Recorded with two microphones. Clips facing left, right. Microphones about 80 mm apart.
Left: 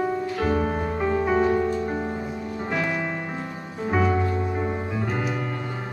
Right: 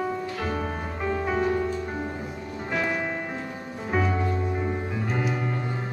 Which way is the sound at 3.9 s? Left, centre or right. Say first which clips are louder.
Left 3 dB; centre.